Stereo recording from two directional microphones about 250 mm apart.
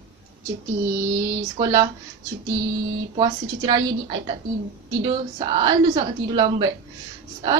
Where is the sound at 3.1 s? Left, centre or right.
Right.